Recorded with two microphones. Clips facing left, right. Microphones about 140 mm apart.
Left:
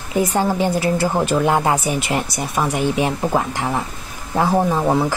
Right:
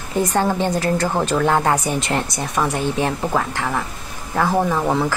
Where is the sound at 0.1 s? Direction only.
10° left (ahead or behind).